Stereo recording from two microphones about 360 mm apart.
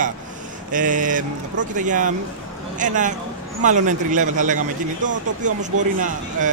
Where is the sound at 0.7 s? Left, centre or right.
Right.